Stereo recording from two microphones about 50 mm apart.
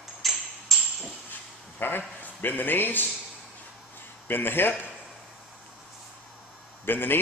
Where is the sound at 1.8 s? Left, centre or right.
Left.